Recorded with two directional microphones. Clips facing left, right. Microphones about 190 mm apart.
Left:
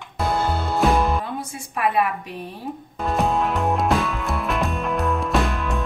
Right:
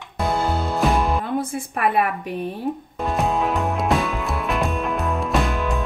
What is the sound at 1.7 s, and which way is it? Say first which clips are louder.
Speech: even; 50° right (ahead or behind).